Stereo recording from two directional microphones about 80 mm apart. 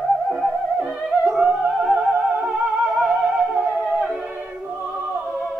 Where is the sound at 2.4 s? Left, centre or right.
Centre.